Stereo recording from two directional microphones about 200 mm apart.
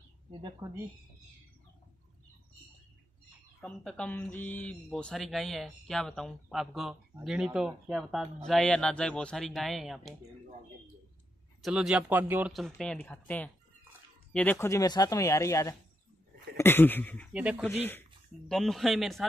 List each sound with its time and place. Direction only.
0.3 s speech: 20° right (ahead or behind)
3.6 s speech: 5° left (ahead or behind)
11.6 s speech: centre (ahead or behind)
17.3 s speech: 5° right (ahead or behind)